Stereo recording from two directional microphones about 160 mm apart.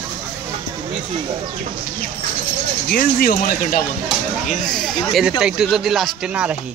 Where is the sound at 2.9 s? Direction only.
65° left (ahead or behind).